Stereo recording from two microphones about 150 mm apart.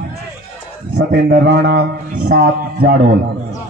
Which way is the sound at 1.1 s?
90° right.